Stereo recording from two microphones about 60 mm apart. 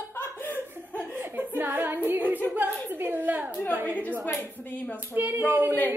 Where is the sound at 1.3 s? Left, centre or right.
Right.